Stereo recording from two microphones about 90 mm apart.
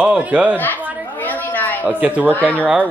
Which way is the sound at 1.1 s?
20° left (ahead or behind).